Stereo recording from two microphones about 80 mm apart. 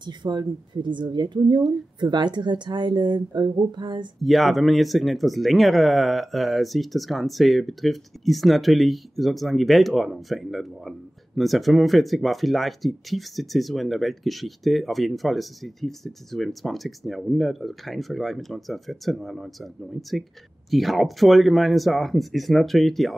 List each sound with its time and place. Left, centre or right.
0.0 s speech: right
4.2 s speech: centre